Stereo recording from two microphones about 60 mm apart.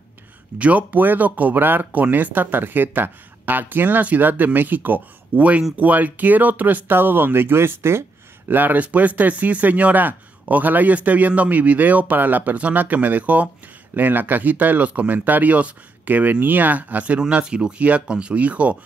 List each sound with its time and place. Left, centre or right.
0.6 s speech: right
8.5 s speech: right